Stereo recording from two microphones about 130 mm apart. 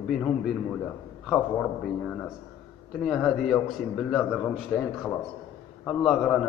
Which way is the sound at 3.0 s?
Centre (ahead or behind).